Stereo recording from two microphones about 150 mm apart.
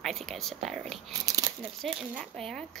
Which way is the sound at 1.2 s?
25° right (ahead or behind).